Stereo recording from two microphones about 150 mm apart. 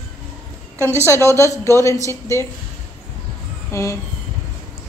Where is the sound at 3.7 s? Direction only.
20° left (ahead or behind).